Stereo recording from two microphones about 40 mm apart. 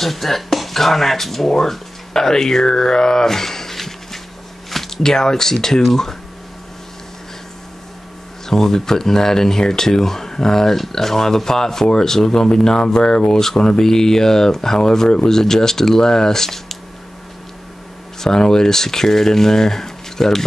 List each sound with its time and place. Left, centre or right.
0.0 s speech: centre
8.5 s speech: centre
18.2 s speech: centre